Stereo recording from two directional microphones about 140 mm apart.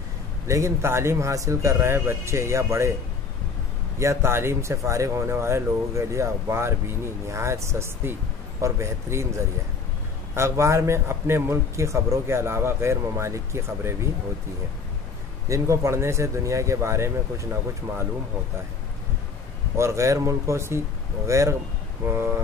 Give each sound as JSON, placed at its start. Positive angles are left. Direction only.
{"t": 0.5, "sound": "speech", "side_deg": -20}
{"t": 4.0, "sound": "speech", "side_deg": -20}
{"t": 10.3, "sound": "speech", "side_deg": -20}
{"t": 15.4, "sound": "speech", "side_deg": -20}
{"t": 19.8, "sound": "speech", "side_deg": -20}